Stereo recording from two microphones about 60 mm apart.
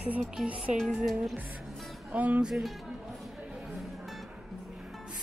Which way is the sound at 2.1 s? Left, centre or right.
Right.